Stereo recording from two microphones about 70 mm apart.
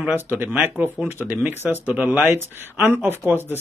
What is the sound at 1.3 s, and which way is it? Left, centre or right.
Speech, right.